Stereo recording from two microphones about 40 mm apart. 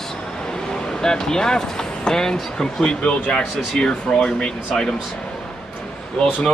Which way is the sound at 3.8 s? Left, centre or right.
Centre.